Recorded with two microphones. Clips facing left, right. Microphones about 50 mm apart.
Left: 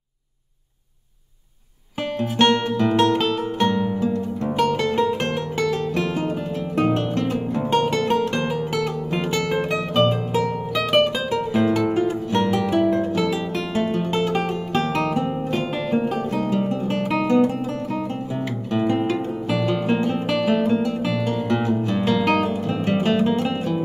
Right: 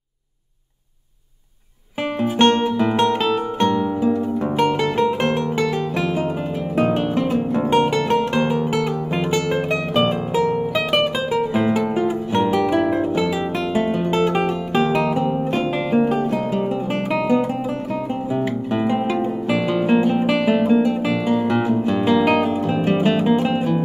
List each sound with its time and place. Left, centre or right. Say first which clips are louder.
2.1 s music: right 2 dB; centre
4.6 s music: right 1 dB; centre
6.7 s guitar: right 2 dB; centre
7.5 s music: right 3 dB; centre
7.9 s music: right 2 dB; centre
18.3 s guitar: right 5 dB; centre